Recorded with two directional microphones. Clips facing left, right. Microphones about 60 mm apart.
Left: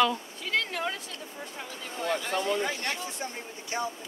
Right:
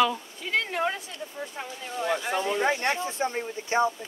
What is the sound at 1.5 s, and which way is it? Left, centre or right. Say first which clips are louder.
Speech: right 2 dB; centre.